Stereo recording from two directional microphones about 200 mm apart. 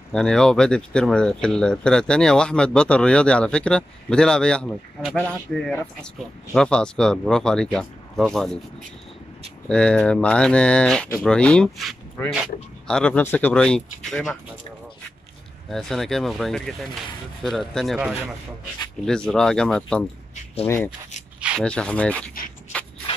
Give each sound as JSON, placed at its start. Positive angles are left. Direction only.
{"t": 0.1, "sound": "speech", "side_deg": 5}
{"t": 9.7, "sound": "speech", "side_deg": 5}
{"t": 15.7, "sound": "speech", "side_deg": 0}
{"t": 21.4, "sound": "a sound", "side_deg": -5}
{"t": 21.6, "sound": "speech", "side_deg": 5}